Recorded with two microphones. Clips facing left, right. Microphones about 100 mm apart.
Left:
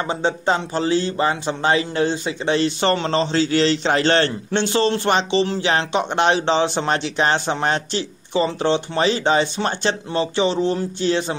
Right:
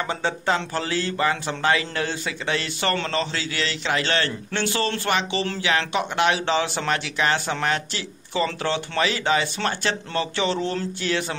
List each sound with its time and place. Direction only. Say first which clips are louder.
0.1 s speech: left 5 dB; 20° left (ahead or behind)